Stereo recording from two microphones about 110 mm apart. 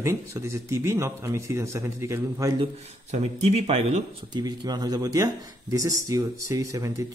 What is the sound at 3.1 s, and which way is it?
Speech, 70° right (ahead or behind).